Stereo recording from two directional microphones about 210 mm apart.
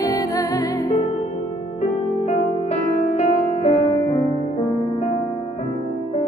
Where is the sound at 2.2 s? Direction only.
30° left (ahead or behind).